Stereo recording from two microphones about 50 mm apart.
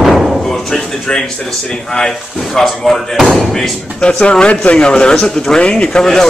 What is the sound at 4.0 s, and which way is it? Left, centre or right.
Speech, left.